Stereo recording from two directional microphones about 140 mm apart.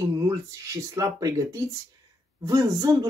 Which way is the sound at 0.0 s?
25° right (ahead or behind).